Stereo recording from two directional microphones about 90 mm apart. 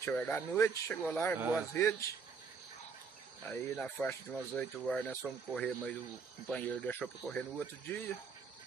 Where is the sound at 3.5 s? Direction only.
15° left (ahead or behind).